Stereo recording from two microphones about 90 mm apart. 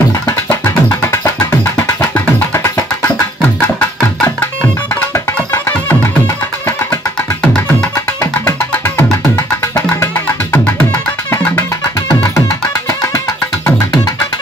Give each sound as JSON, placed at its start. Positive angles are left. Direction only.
{"t": 0.5, "sound": "music", "side_deg": 30}
{"t": 1.6, "sound": "music", "side_deg": 15}
{"t": 2.5, "sound": "music", "side_deg": 30}
{"t": 5.1, "sound": "music", "side_deg": 30}
{"t": 8.2, "sound": "music", "side_deg": 30}